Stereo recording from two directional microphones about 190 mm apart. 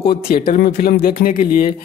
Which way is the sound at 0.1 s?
50° left (ahead or behind).